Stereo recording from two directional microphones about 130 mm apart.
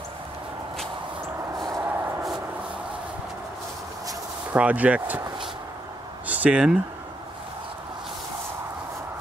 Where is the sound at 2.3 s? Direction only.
5° right (ahead or behind).